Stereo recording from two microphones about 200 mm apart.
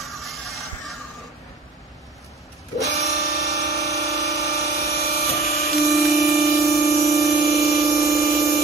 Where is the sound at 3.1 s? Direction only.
50° left (ahead or behind).